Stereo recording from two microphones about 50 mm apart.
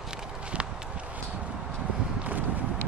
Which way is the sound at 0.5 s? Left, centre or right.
Right.